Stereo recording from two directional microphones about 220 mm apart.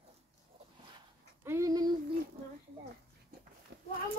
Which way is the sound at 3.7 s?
50° right (ahead or behind).